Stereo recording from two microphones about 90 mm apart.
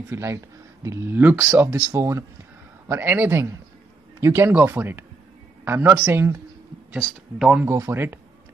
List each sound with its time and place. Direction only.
0.1 s speech: 35° right (ahead or behind)
1.1 s speech: 20° right (ahead or behind)
7.3 s speech: 10° right (ahead or behind)
7.6 s speech: 30° right (ahead or behind)